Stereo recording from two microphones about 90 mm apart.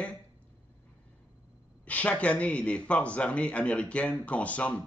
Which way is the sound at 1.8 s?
15° left (ahead or behind).